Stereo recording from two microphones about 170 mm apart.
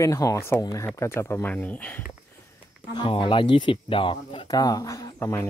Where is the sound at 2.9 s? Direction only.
30° left (ahead or behind).